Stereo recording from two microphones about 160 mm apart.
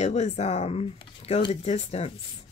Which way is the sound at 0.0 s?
45° left (ahead or behind).